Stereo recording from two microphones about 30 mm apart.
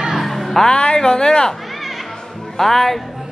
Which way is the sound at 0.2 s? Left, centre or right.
Centre.